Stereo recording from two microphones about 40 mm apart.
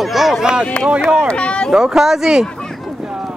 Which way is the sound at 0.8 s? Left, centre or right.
Left.